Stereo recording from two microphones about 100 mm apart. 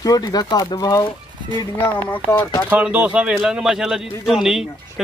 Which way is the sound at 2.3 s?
45° left (ahead or behind).